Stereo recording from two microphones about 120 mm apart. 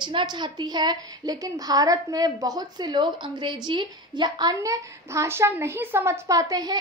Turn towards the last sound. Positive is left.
turn(degrees=-30)  # may be behind; listen again after turning